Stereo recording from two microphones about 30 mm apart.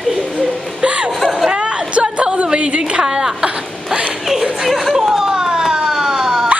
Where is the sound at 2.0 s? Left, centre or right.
Right.